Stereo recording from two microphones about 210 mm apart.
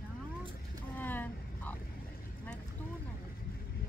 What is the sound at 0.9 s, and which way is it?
Vehicle, 10° left (ahead or behind).